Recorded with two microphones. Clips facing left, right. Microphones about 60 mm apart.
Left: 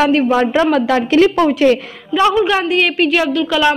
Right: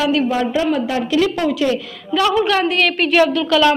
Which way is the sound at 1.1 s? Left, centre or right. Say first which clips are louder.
Left 5 dB; left.